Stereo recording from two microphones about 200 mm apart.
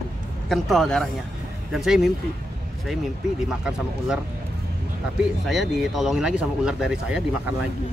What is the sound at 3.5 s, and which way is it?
Speech, 5° right (ahead or behind).